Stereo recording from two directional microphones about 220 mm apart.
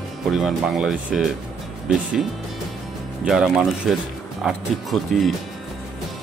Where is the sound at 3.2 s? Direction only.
5° right (ahead or behind).